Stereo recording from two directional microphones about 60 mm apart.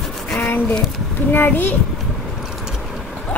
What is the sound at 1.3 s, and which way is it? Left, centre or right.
Speech, left.